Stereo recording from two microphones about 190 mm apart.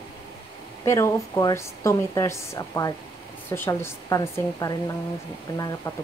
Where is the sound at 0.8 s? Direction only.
15° left (ahead or behind).